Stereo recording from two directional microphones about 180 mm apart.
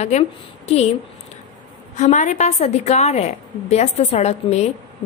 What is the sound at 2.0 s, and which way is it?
A woman's voice, 40° left (ahead or behind).